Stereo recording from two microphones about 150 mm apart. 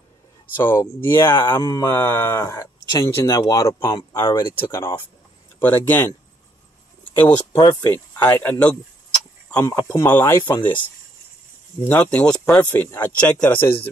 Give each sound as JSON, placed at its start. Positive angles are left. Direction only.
{"t": 0.6, "sound": "speech", "side_deg": 15}
{"t": 1.4, "sound": "speech", "side_deg": 30}
{"t": 1.9, "sound": "speech", "side_deg": 15}
{"t": 7.5, "sound": "speech", "side_deg": 30}
{"t": 7.9, "sound": "speech", "side_deg": 15}
{"t": 9.7, "sound": "speech", "side_deg": 20}